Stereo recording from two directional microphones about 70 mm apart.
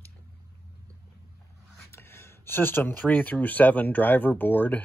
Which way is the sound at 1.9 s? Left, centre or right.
Left.